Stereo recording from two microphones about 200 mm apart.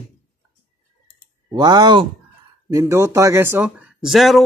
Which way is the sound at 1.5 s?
20° right (ahead or behind).